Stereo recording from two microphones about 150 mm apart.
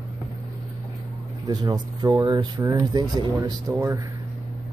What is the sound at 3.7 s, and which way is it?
Speech, 15° right (ahead or behind).